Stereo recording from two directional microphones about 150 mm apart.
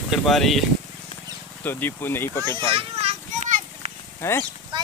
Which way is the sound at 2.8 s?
45° right (ahead or behind).